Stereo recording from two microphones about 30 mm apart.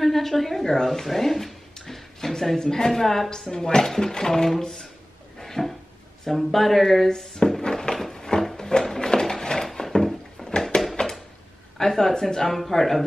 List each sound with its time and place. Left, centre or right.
0.0 s a woman's voice: centre
5.4 s cupboard open or close: centre
6.3 s speech: centre
7.9 s a sound: centre
8.5 s music: centre
9.2 s a sound: centre
11.8 s speech: centre
12.4 s speech: centre